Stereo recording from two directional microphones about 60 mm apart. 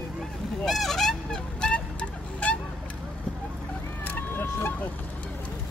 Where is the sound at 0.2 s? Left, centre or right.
Centre.